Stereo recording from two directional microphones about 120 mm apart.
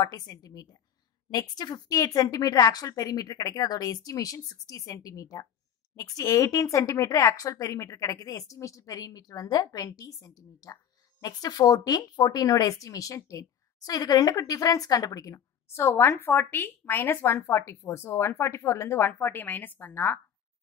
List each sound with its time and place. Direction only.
0.0 s a woman's voice: 30° left (ahead or behind); by 20.2 s 15° left (ahead or behind)